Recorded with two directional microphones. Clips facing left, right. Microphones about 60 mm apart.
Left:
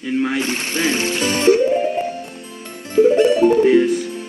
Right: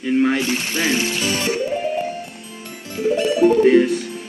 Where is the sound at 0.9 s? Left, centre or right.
Left.